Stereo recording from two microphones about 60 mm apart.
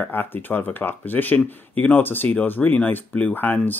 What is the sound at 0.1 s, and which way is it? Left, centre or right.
Speech, left.